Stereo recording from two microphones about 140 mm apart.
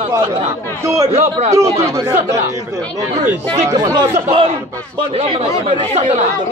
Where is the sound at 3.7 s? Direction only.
25° right (ahead or behind).